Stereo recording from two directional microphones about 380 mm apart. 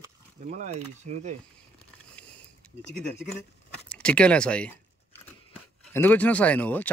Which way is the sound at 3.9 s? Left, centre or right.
Centre.